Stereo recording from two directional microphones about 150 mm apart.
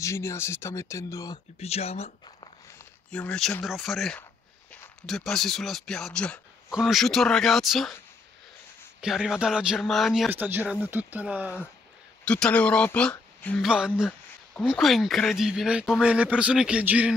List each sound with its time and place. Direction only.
0.0 s speech: 20° left (ahead or behind)
1.6 s speech: 45° left (ahead or behind)
3.1 s speech: 5° left (ahead or behind)
9.0 s speech: 5° right (ahead or behind)
10.3 s speech: 15° right (ahead or behind)
12.3 s speech: 5° left (ahead or behind)
13.7 s speech: 5° right (ahead or behind)